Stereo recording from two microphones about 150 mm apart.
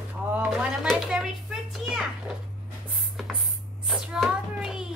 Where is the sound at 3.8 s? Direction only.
5° right (ahead or behind).